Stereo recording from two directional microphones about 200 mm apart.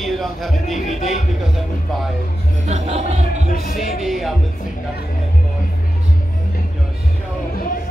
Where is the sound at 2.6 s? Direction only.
35° right (ahead or behind).